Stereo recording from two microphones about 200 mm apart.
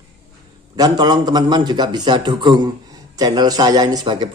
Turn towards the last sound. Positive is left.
turn(degrees=-25)  # may be behind; listen again after turning